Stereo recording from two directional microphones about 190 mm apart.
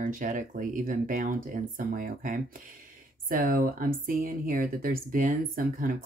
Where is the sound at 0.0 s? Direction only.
45° right (ahead or behind).